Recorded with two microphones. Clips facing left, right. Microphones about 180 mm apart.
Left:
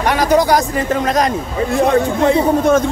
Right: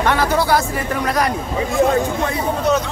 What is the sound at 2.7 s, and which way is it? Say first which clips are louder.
Speech: left 3 dB; 50° left (ahead or behind).